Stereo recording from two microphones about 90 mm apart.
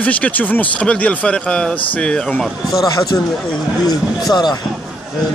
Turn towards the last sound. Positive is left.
turn(degrees=50)  # may be behind; listen again after turning